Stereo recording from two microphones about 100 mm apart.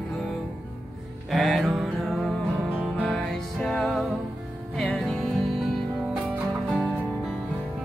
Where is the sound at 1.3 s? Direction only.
Centre (ahead or behind).